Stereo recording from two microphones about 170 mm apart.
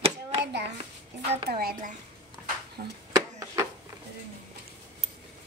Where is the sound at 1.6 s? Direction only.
60° right (ahead or behind).